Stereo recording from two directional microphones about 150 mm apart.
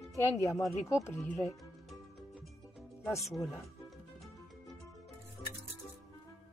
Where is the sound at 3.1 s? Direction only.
20° left (ahead or behind).